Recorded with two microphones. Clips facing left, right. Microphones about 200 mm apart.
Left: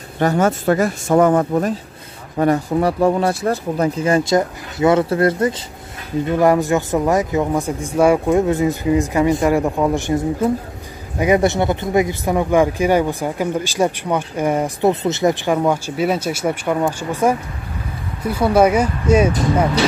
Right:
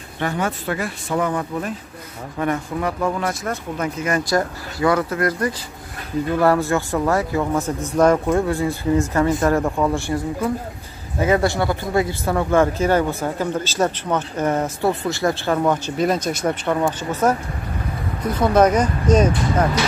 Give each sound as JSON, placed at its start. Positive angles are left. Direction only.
{"t": 0.2, "sound": "speech", "side_deg": 40}
{"t": 6.3, "sound": "speech", "side_deg": 15}